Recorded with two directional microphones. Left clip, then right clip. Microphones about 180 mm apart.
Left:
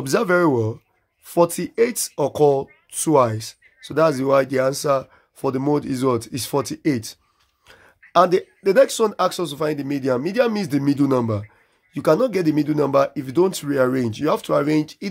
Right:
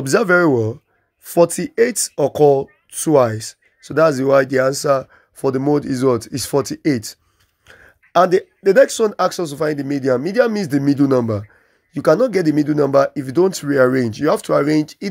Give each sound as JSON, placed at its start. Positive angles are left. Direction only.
{"t": 0.0, "sound": "speech", "side_deg": -20}